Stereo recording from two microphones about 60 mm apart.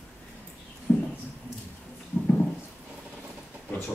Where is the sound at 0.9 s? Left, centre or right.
Centre.